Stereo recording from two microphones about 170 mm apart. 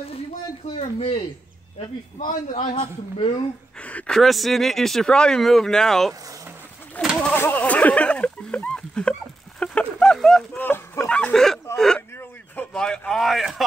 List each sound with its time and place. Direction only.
0.7 s a man's voice: 40° left (ahead or behind)
2.7 s a man's voice: 30° left (ahead or behind)
3.8 s speech: 5° left (ahead or behind)
7.0 s a sound: centre (ahead or behind)
10.6 s speech: 10° left (ahead or behind)